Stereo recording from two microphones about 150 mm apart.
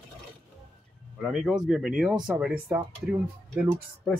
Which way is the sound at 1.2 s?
Centre (ahead or behind).